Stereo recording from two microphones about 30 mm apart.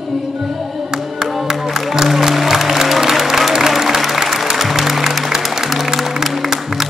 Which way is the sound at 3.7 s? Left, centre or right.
Centre.